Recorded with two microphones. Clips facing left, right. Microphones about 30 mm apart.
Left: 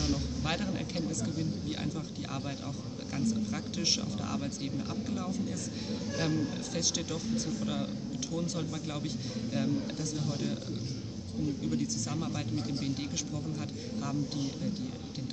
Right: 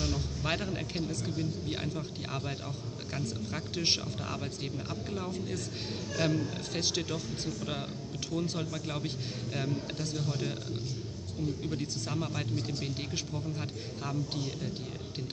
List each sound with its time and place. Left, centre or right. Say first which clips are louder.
0.0 s a sound: left 1 dB; centre
1.4 s speech: even; centre
3.5 s a man's voice: right 1 dB; right
5.3 s a man's voice: left 1 dB; right
6.2 s a man's voice: right 2 dB; right
6.7 s a man's voice: even; right
8.5 s a man's voice: even; right
9.9 s a man's voice: even; right
12.1 s a man's voice: even; centre
14.0 s a man's voice: left 1 dB; right